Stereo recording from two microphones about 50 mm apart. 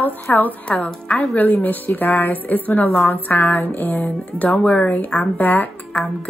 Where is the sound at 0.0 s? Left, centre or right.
Left.